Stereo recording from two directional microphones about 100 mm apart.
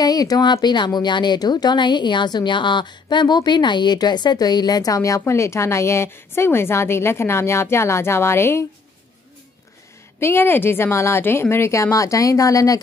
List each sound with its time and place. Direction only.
0.0 s speech: 40° left (ahead or behind); by 8.6 s 25° left (ahead or behind)
10.2 s speech: 20° left (ahead or behind)